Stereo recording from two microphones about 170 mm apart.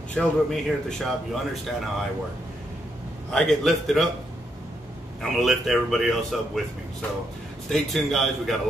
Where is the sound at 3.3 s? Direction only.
Centre (ahead or behind).